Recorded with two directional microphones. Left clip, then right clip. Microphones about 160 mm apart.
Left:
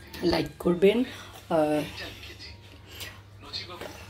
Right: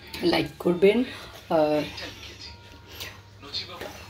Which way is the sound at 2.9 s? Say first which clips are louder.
Right 2 dB; 10° right (ahead or behind).